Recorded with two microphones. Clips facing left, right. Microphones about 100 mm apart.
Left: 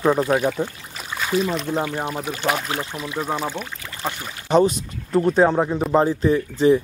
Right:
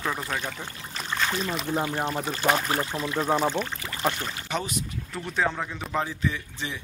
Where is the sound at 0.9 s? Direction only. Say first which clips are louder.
Left 5 dB; 5° left (ahead or behind).